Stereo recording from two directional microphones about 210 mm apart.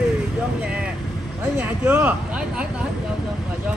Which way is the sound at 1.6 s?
10° right (ahead or behind).